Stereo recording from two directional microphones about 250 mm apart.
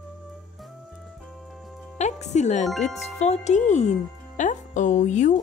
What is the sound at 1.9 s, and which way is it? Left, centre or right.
Music, left.